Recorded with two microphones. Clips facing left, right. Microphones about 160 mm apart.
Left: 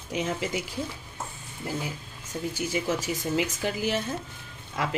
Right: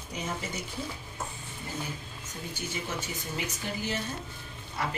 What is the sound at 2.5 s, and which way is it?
Speech, 90° left.